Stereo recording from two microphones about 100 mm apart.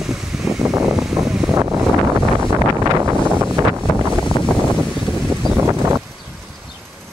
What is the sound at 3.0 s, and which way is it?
Wind noise, 30° right (ahead or behind).